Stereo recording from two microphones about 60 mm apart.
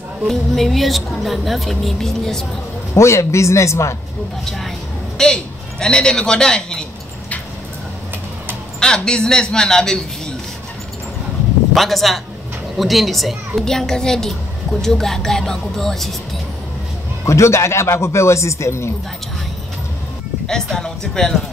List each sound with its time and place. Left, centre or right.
0.3 s a woman's voice: centre
2.9 s a man's voice: left
4.5 s a sound: centre
8.7 s a woman's voice: centre
11.7 s a woman's voice: centre
17.3 s a man's voice: left
20.4 s a woman's voice: centre